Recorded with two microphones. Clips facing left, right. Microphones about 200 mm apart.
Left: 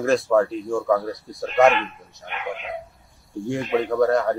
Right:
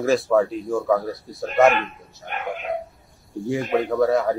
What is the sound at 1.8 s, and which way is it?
Speech, 45° right (ahead or behind).